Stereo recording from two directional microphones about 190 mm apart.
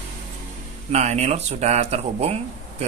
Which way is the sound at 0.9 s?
35° right (ahead or behind).